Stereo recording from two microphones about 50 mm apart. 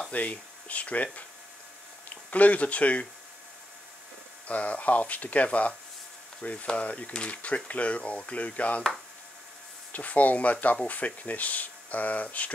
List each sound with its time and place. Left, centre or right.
0.1 s speech: left
4.5 s speech: left
9.9 s speech: left